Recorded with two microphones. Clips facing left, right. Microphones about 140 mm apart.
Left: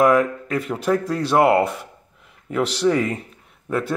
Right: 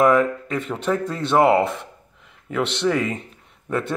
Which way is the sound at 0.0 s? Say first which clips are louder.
Even; 5° left (ahead or behind).